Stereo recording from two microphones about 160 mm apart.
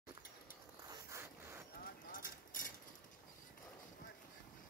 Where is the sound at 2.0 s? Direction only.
60° left (ahead or behind).